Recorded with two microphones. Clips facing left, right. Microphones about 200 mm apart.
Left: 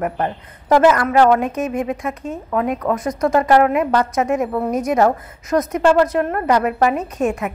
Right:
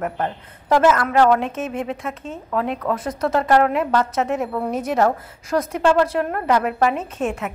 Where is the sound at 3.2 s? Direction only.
10° left (ahead or behind).